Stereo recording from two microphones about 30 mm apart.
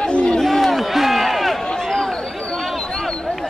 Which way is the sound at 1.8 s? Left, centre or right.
Centre.